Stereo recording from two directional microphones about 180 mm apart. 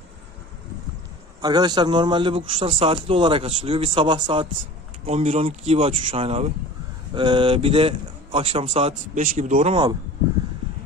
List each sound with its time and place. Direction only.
1.4 s a man's voice: 25° right (ahead or behind); by 9.8 s 40° right (ahead or behind)